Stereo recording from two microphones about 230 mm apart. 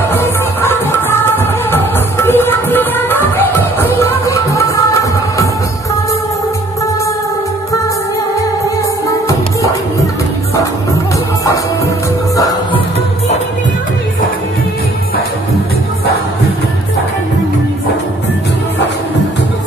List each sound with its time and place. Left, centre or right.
0.1 s music: centre
12.4 s music: centre